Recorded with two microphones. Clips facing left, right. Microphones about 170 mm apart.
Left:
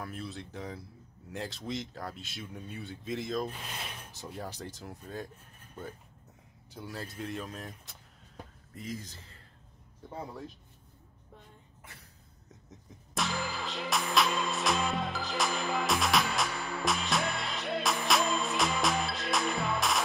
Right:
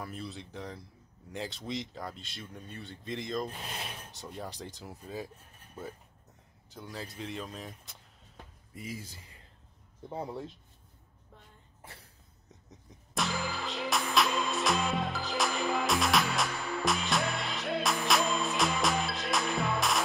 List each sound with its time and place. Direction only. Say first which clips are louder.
0.0 s speech: left 1 dB; centre (ahead or behind)
6.7 s speech: left 1 dB; 5° left (ahead or behind)
10.0 s speech: right 3 dB; 25° right (ahead or behind)
13.1 s music: right 1 dB; centre (ahead or behind)